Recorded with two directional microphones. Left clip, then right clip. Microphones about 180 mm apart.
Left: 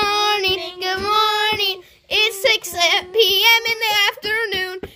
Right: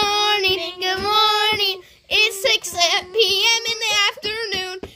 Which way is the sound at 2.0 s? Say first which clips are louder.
Left 1 dB; 20° left (ahead or behind).